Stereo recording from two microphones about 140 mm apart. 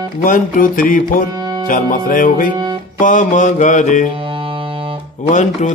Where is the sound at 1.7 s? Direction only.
70° left (ahead or behind).